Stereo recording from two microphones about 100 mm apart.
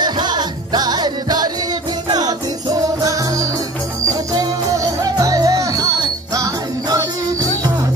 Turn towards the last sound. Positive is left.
turn(degrees=-35)  # may be behind; listen again after turning